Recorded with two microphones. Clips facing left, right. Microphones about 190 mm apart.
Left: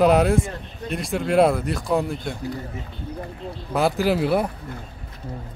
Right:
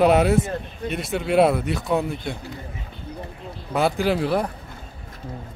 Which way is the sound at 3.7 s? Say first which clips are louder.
Left 1 dB; centre (ahead or behind).